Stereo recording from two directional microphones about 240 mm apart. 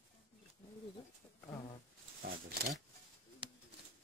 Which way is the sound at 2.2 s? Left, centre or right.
Right.